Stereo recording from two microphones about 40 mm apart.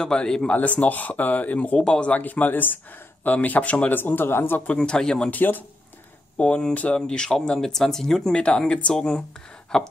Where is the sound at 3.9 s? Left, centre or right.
Left.